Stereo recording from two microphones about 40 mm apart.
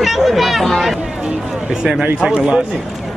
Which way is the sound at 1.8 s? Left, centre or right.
Right.